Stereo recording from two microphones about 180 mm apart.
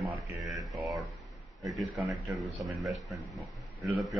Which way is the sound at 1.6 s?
15° right (ahead or behind).